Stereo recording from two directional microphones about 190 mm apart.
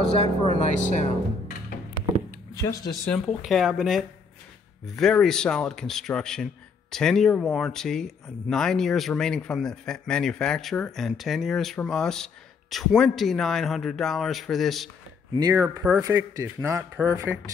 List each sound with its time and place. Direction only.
0.0 s speech: 30° left (ahead or behind)
2.5 s speech: 15° left (ahead or behind)
3.1 s speech: centre (ahead or behind)
15.3 s speech: 15° right (ahead or behind)